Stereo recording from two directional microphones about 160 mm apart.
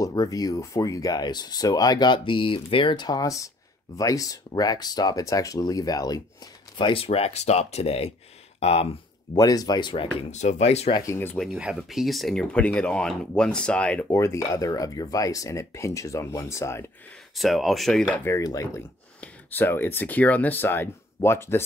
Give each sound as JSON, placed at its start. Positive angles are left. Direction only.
{"t": 0.0, "sound": "speech", "side_deg": 20}
{"t": 6.8, "sound": "speech", "side_deg": 35}
{"t": 9.3, "sound": "speech", "side_deg": 25}
{"t": 10.1, "sound": "speech", "side_deg": 45}
{"t": 11.0, "sound": "speech", "side_deg": 15}
{"t": 11.3, "sound": "speech", "side_deg": 0}
{"t": 14.0, "sound": "speech", "side_deg": 20}
{"t": 17.4, "sound": "speech", "side_deg": 0}
{"t": 18.2, "sound": "speech", "side_deg": 20}